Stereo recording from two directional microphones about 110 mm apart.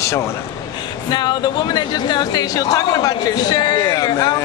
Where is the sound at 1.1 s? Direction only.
40° left (ahead or behind).